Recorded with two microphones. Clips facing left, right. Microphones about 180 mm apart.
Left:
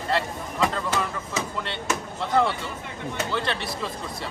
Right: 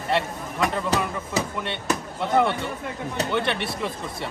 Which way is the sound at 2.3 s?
20° right (ahead or behind).